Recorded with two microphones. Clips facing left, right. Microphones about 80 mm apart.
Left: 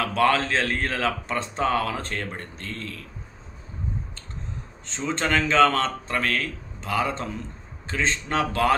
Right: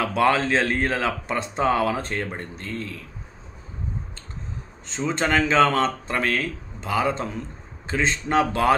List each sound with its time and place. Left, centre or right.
0.0 s speech: centre
4.8 s speech: centre